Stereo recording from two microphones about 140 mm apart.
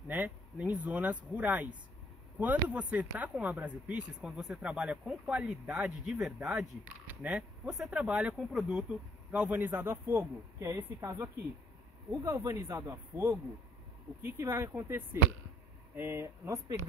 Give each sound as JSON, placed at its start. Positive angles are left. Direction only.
{"t": 0.1, "sound": "speech", "side_deg": -10}